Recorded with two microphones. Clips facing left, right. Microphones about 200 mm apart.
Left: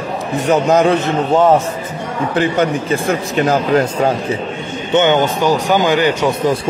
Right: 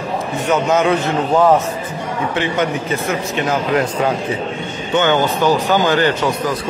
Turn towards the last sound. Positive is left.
turn(degrees=15)  # may be behind; listen again after turning